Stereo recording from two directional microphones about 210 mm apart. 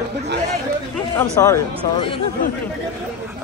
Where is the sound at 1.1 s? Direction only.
15° left (ahead or behind).